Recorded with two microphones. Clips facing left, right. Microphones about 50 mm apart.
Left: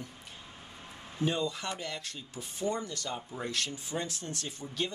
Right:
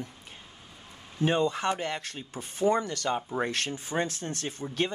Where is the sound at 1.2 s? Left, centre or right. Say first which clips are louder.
Right 6 dB; right.